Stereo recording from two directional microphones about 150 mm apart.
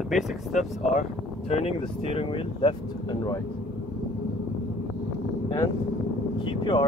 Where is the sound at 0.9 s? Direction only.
45° left (ahead or behind).